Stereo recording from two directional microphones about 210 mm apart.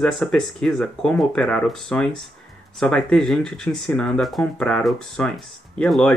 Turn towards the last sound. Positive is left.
turn(degrees=5)  # may be behind; listen again after turning